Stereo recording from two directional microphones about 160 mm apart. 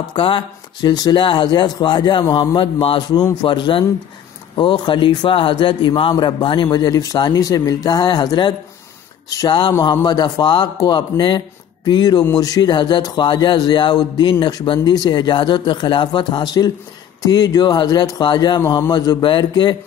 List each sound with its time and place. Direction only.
0.1 s a man's voice: 30° left (ahead or behind)